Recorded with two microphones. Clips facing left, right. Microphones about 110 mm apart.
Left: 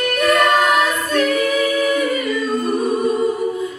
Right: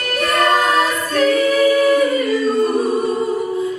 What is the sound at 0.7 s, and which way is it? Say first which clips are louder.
Choir: even; 35° right (ahead or behind).